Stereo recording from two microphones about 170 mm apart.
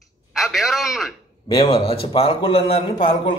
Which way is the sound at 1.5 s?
35° left (ahead or behind).